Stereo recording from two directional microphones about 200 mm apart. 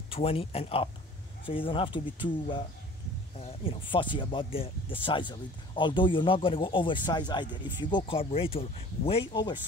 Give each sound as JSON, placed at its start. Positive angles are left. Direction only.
{"t": 0.1, "sound": "speech", "side_deg": 30}